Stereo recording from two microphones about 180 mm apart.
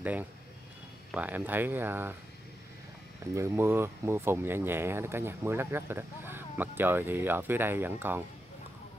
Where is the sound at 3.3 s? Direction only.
15° right (ahead or behind).